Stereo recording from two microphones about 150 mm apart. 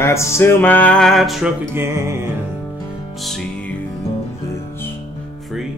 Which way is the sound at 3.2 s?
5° left (ahead or behind).